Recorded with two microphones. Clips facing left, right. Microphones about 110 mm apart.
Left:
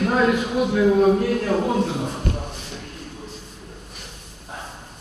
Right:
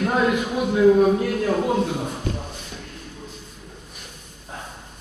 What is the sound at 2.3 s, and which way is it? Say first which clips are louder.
Shuffle: even; 60° left (ahead or behind).